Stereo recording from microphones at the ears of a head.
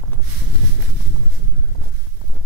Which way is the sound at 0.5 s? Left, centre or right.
Left.